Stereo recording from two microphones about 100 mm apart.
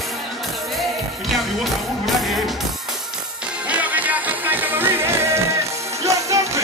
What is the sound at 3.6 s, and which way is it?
Music, 15° right (ahead or behind).